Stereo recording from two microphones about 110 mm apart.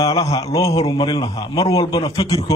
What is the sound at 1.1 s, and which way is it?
Speech, 50° left (ahead or behind).